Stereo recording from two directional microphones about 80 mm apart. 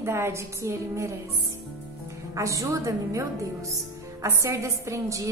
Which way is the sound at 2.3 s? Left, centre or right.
Right.